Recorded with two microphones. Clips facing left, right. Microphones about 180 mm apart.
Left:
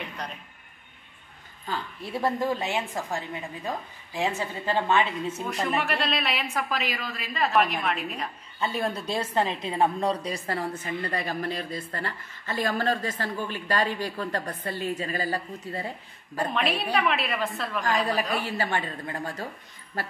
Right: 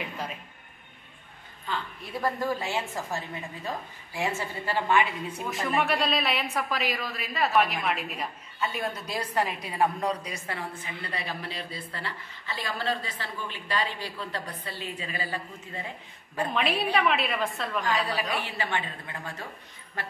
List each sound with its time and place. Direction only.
0.0 s a sound: 5° right (ahead or behind)
2.1 s a woman's voice: 20° left (ahead or behind)
5.8 s a woman's voice: centre (ahead or behind)
8.5 s a woman's voice: 30° left (ahead or behind)
16.5 s a woman's voice: centre (ahead or behind)
17.8 s a woman's voice: 45° left (ahead or behind)